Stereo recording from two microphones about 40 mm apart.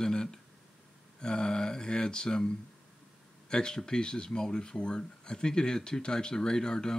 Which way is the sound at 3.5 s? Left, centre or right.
Centre.